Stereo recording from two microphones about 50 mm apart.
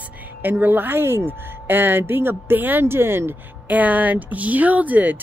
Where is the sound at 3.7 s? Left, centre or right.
Right.